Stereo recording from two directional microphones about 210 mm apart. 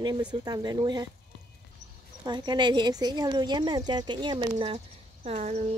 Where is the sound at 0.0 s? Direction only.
20° right (ahead or behind).